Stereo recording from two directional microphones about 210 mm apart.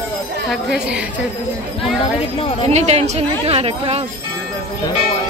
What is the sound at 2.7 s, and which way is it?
Speech, 30° right (ahead or behind).